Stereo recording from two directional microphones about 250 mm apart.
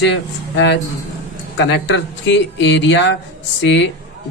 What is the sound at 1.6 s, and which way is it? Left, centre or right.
A man's voice, left.